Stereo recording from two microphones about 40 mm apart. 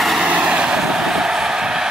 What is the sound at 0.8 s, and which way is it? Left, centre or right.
Vehicle, centre.